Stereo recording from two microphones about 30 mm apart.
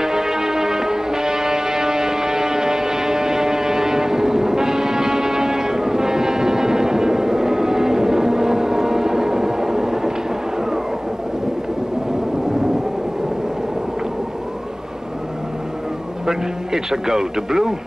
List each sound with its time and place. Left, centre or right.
0.0 s music: centre
16.3 s a man's voice: centre